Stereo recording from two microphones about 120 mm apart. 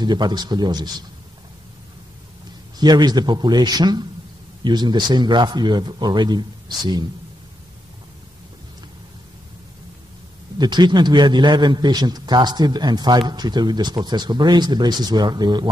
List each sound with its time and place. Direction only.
0.0 s a man's voice: 35° right (ahead or behind)
2.8 s a man's voice: 35° right (ahead or behind)
10.6 s a man's voice: 40° right (ahead or behind)